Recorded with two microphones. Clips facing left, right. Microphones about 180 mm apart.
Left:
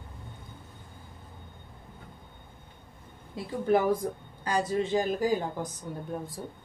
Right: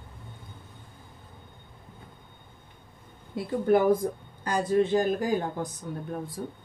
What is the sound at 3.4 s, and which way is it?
A woman's voice, 55° right (ahead or behind).